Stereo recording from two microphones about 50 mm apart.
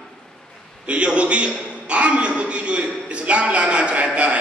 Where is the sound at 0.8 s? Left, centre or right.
Right.